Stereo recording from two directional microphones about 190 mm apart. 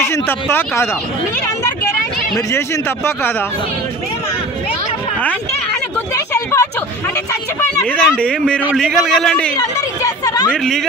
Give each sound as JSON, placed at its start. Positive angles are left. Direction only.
{"t": 0.0, "sound": "speech", "side_deg": 10}
{"t": 6.1, "sound": "a sound", "side_deg": 15}
{"t": 7.8, "sound": "speech", "side_deg": 5}
{"t": 9.6, "sound": "speech", "side_deg": 20}
{"t": 10.5, "sound": "speech", "side_deg": 0}